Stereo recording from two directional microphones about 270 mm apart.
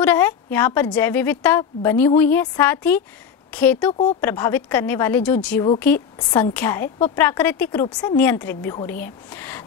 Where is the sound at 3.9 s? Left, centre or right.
Left.